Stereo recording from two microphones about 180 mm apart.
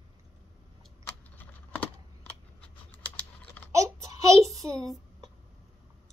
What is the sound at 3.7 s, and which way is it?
Child singing, 15° right (ahead or behind).